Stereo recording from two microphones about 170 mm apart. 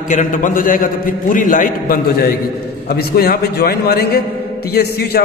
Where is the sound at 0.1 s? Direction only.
50° left (ahead or behind).